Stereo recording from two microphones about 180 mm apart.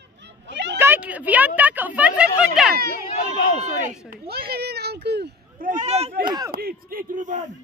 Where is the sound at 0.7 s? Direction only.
10° right (ahead or behind).